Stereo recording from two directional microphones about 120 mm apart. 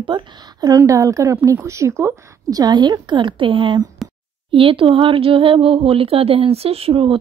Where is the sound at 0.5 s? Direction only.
30° right (ahead or behind).